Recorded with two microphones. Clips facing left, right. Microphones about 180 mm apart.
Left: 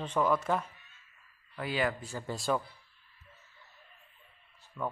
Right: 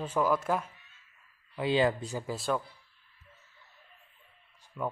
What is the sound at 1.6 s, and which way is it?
Speech, 25° right (ahead or behind).